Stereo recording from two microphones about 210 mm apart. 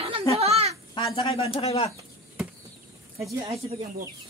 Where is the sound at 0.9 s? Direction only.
25° left (ahead or behind).